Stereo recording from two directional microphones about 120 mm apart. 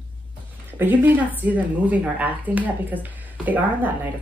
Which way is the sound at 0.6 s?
15° right (ahead or behind).